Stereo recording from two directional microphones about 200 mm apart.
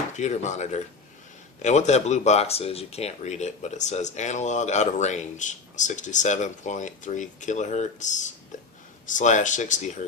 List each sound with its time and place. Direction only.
0.2 s speech: 35° left (ahead or behind)